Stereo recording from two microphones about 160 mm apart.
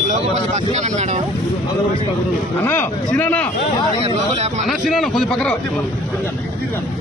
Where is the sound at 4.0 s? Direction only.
45° right (ahead or behind).